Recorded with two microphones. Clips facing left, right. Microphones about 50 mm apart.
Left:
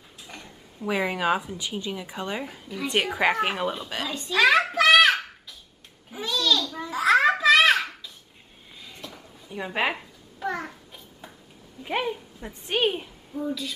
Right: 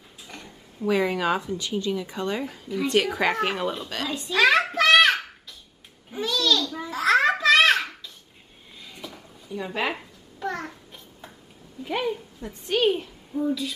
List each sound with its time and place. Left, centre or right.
0.2 s a sound: centre
0.8 s a child's voice: centre
6.1 s babbling: centre
8.8 s a sound: centre
9.5 s a woman's voice: left
9.9 s babbling: centre
11.8 s a woman's voice: centre
13.3 s speech: centre